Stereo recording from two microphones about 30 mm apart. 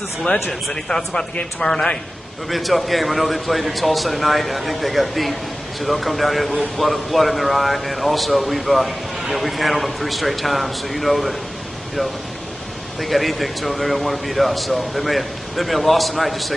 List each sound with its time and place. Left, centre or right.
0.2 s speech: centre
1.6 s a man's voice: left
2.5 s a man's voice: centre
13.0 s a man's voice: centre